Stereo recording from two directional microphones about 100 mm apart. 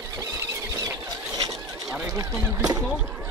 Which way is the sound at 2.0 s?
35° right (ahead or behind).